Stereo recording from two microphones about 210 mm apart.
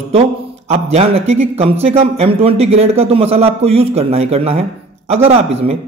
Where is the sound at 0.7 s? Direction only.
30° right (ahead or behind).